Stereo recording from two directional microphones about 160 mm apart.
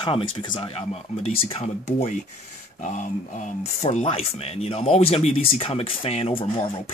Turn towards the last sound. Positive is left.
turn(degrees=35)  # may be behind; listen again after turning